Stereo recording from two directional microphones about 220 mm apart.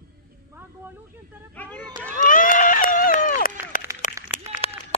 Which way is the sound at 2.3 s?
40° left (ahead or behind).